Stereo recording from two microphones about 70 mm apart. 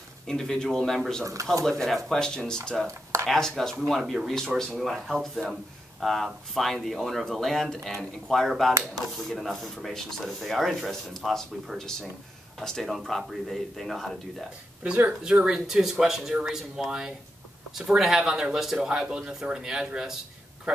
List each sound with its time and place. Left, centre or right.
0.3 s speech: centre
1.2 s speech: right
1.6 s speech: centre
4.0 s speech: centre
14.8 s speech: right